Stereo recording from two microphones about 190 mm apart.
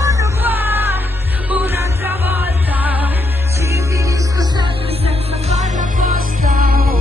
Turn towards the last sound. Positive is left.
turn(degrees=-50)  # may be behind; listen again after turning